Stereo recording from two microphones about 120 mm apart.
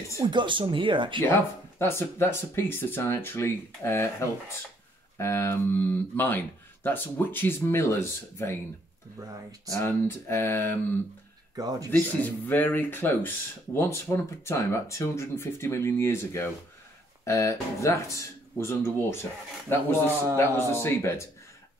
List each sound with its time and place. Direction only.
0.2 s speech: 40° right (ahead or behind)
1.2 s speech: 20° left (ahead or behind)
9.8 s speech: 20° left (ahead or behind)
11.5 s speech: 30° right (ahead or behind)
11.9 s speech: 15° left (ahead or behind)